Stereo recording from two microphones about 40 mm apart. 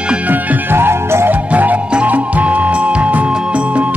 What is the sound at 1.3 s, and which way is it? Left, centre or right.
Music, right.